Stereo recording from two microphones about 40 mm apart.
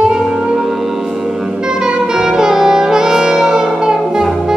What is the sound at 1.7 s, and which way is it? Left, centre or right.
Saxophone, centre.